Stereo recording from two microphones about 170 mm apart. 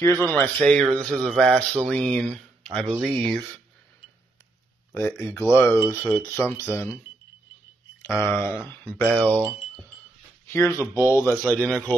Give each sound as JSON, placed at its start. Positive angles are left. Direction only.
{"t": 0.0, "sound": "speech", "side_deg": 10}
{"t": 0.9, "sound": "a sound", "side_deg": 5}
{"t": 1.9, "sound": "speech", "side_deg": 5}
{"t": 3.0, "sound": "a sound", "side_deg": 5}
{"t": 4.9, "sound": "speech", "side_deg": 15}
{"t": 8.1, "sound": "speech", "side_deg": -10}
{"t": 8.6, "sound": "speech", "side_deg": 10}
{"t": 9.3, "sound": "speech", "side_deg": -15}
{"t": 10.4, "sound": "a sound", "side_deg": 15}
{"t": 10.8, "sound": "speech", "side_deg": 20}
{"t": 11.5, "sound": "speech", "side_deg": 5}